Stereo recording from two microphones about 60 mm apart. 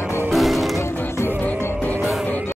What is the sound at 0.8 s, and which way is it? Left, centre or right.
Music, left.